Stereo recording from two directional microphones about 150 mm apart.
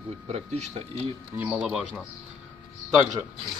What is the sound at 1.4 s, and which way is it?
Speech, 10° right (ahead or behind).